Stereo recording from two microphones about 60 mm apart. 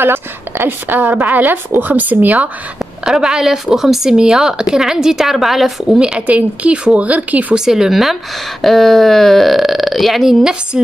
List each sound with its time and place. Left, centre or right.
0.0 s a woman's voice: right
3.1 s speech: centre
5.9 s a woman's voice: centre
7.5 s speech: centre